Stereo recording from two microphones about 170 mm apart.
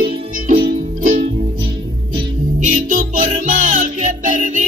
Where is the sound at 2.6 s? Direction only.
50° right (ahead or behind).